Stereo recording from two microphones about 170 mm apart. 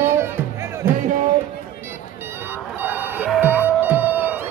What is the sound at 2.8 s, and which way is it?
Music, 10° right (ahead or behind).